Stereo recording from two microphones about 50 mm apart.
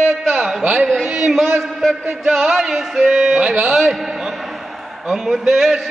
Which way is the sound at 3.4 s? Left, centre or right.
Right.